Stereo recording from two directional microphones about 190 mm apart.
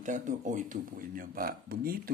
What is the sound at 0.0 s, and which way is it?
Speech, 40° right (ahead or behind).